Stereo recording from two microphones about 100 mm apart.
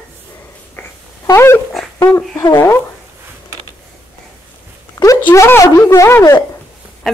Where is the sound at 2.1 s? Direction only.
25° left (ahead or behind).